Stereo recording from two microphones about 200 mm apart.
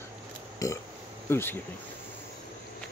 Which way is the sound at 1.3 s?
10° left (ahead or behind).